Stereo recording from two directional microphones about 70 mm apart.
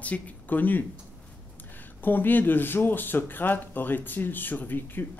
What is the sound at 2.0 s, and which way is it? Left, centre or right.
Speech, left.